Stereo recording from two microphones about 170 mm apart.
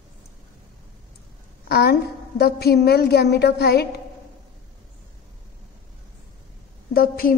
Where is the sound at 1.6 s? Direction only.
70° left (ahead or behind).